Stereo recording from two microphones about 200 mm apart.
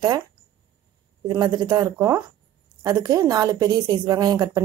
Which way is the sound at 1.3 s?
20° right (ahead or behind).